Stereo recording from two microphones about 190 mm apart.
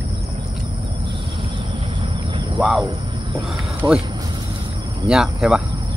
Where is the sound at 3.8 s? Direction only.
20° right (ahead or behind).